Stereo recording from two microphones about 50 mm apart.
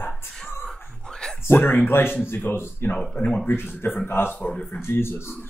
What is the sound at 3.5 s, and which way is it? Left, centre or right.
Speech, left.